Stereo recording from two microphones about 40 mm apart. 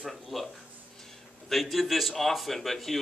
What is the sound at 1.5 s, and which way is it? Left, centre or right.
A man's voice, centre.